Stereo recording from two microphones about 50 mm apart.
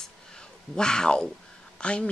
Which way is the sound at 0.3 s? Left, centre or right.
Centre.